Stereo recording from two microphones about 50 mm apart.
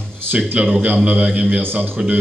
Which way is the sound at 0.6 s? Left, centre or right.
Right.